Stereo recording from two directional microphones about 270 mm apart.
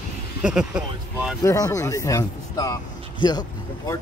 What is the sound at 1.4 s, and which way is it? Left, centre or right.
Speech, centre.